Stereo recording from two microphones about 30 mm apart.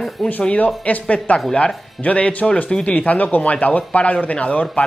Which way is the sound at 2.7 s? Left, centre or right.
Left.